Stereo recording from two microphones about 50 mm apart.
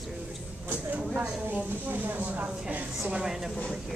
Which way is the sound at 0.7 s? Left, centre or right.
Right.